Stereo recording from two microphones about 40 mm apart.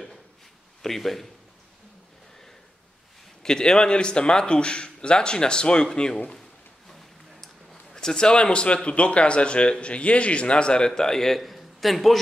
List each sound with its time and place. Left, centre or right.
0.8 s a man's voice: centre
3.4 s a man's voice: centre
6.9 s a sound: centre
7.9 s a man's voice: centre
11.0 s a man's voice: centre